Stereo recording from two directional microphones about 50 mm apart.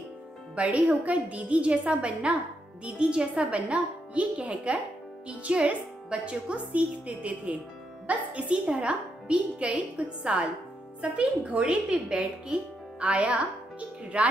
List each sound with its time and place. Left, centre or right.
0.6 s a woman's voice: right